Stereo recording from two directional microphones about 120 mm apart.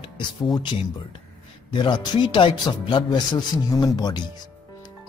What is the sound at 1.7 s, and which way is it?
Speech, 40° left (ahead or behind).